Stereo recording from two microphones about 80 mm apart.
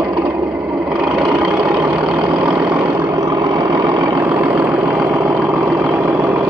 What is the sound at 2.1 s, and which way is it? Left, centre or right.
Vehicle, right.